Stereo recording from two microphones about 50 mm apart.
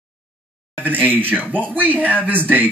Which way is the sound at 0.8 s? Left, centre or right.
Right.